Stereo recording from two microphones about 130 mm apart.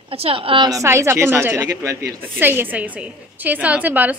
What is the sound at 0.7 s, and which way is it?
A woman's voice, 25° right (ahead or behind).